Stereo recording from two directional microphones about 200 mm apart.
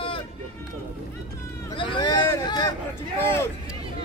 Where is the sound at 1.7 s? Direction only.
25° left (ahead or behind).